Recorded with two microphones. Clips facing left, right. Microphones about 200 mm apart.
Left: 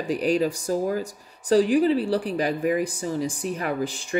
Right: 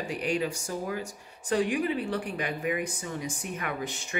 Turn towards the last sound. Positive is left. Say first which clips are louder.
# left 7 dB
turn(degrees=35)  # may be behind; listen again after turning